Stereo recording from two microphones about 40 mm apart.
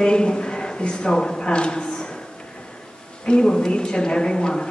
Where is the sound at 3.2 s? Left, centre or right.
Left.